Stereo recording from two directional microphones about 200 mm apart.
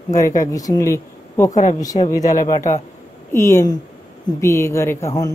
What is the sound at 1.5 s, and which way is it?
Speech, 35° left (ahead or behind).